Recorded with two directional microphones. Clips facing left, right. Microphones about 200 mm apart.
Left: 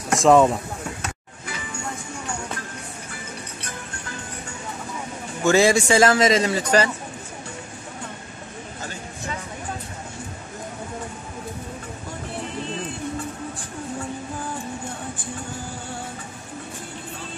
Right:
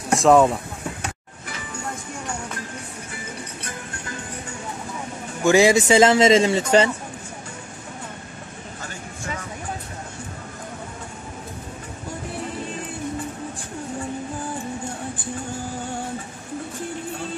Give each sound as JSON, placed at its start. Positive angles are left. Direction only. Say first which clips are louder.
{"t": 0.1, "sound": "speech", "louder": "even", "side_deg": 0}
{"t": 5.4, "sound": "a man's voice", "louder": "right 2 dB", "side_deg": -15}